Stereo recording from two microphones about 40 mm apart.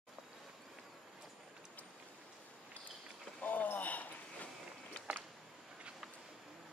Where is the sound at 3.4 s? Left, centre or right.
Left.